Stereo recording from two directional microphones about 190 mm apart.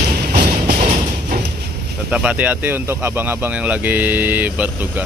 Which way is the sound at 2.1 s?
10° right (ahead or behind).